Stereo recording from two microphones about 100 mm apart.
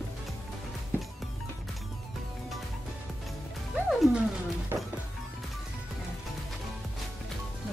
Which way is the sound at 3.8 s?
10° right (ahead or behind).